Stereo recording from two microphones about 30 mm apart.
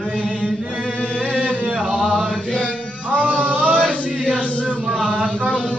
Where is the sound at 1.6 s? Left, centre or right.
Right.